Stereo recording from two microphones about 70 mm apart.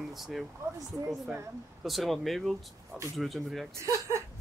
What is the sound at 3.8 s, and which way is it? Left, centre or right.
Speech, right.